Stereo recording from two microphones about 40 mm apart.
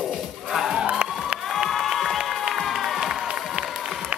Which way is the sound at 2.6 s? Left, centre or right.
Centre.